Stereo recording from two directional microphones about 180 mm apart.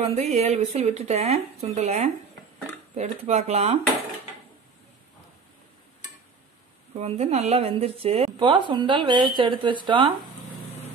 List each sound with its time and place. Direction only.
0.0 s speech: 35° right (ahead or behind)
7.0 s speech: 35° right (ahead or behind)